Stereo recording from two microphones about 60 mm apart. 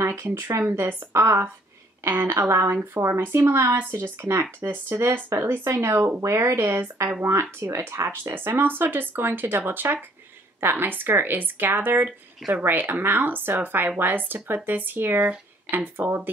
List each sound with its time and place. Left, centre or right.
0.0 s speech: right
1.1 s speech: right
3.9 s speech: right
4.3 s speech: right
5.9 s speech: right
6.2 s speech: right